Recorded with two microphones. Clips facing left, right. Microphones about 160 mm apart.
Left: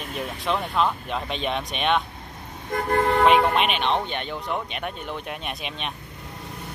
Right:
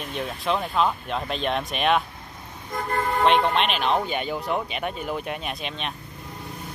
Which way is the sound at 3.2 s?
5° left (ahead or behind).